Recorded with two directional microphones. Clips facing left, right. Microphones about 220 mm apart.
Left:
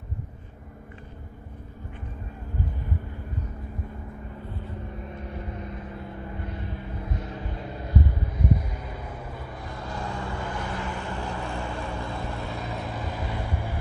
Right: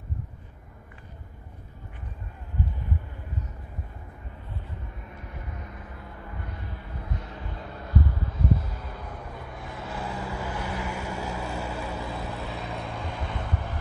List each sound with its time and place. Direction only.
5.1 s vehicle: 30° left (ahead or behind); by 13.7 s 10° left (ahead or behind)